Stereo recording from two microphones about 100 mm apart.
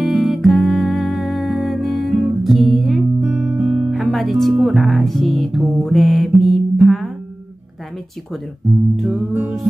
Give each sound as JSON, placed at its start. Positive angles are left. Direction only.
{"t": 0.0, "sound": "music", "side_deg": 0}
{"t": 3.2, "sound": "guitar", "side_deg": -20}
{"t": 3.9, "sound": "speech", "side_deg": -5}
{"t": 5.9, "sound": "mantra", "side_deg": 0}
{"t": 8.9, "sound": "music", "side_deg": 0}
{"t": 9.3, "sound": "music", "side_deg": -15}